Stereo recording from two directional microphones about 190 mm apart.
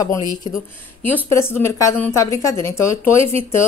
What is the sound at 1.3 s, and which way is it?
Speech, 15° left (ahead or behind).